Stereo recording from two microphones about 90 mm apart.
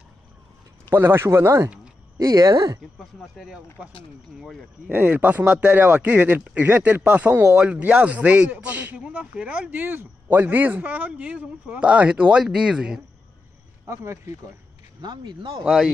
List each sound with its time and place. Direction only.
0.9 s speech: 25° right (ahead or behind)
2.1 s speech: 45° right (ahead or behind)
3.0 s speech: centre (ahead or behind)
4.8 s speech: 15° right (ahead or behind)
13.8 s speech: 35° right (ahead or behind)
15.0 s speech: 60° right (ahead or behind)
15.6 s speech: 5° right (ahead or behind)